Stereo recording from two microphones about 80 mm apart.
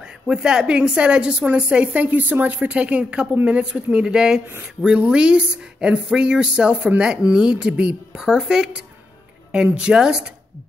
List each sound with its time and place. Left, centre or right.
0.3 s a woman's voice: centre